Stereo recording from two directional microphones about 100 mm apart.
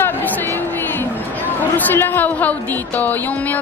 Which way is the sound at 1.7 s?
20° left (ahead or behind).